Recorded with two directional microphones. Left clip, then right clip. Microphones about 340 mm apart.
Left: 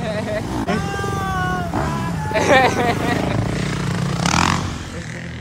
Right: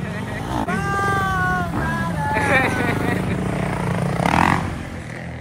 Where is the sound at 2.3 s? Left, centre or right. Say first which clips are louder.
Left 5 dB; centre.